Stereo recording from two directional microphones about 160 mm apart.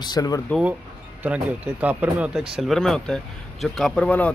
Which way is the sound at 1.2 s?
10° right (ahead or behind).